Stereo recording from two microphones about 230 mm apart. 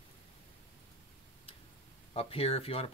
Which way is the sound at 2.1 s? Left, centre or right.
Left.